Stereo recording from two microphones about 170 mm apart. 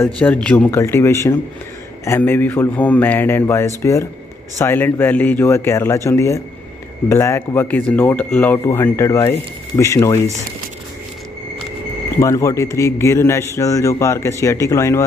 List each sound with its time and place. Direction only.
0.0 s speech: 10° left (ahead or behind)
12.2 s speech: 20° left (ahead or behind)